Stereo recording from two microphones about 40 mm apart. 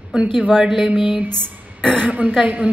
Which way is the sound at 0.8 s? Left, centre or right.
Right.